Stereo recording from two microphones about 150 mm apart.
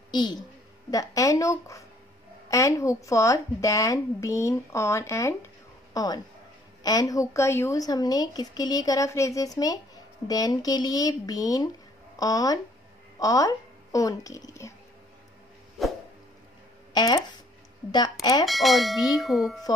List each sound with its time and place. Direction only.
0.1 s a woman's voice: 30° left (ahead or behind)
16.9 s speech: 25° left (ahead or behind)
18.4 s speech: centre (ahead or behind)